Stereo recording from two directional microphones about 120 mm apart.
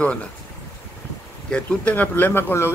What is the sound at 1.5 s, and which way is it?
A man's voice, 10° left (ahead or behind).